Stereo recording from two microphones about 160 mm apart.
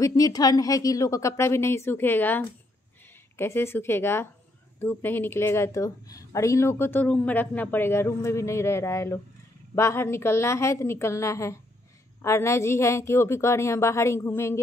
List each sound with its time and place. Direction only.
0.0 s a woman's voice: 25° left (ahead or behind)